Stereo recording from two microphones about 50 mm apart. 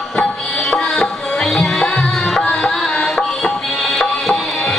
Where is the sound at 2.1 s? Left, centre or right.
Centre.